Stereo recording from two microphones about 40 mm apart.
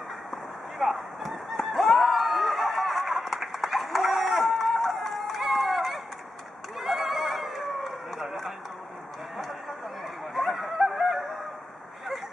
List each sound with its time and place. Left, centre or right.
0.3 s a sound: centre
10.3 s honk: centre
10.9 s fowl: centre